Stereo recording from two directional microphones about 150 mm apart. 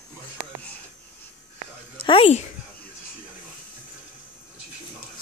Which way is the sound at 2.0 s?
35° left (ahead or behind).